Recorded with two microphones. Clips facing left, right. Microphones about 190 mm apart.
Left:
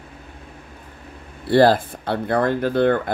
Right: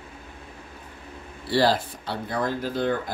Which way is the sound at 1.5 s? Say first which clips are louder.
Left 7 dB; 55° left (ahead or behind).